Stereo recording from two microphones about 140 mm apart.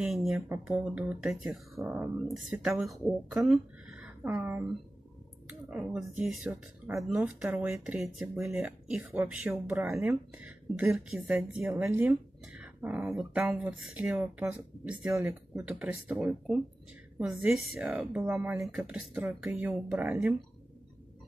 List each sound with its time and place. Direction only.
0.0 s speech: centre (ahead or behind)
2.8 s speech: centre (ahead or behind)
6.9 s speech: 15° right (ahead or behind)